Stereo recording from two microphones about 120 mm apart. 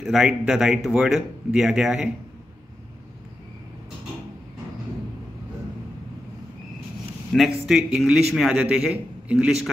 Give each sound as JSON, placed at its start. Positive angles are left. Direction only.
{"t": 0.0, "sound": "a man's voice", "side_deg": -5}
{"t": 7.3, "sound": "a man's voice", "side_deg": 0}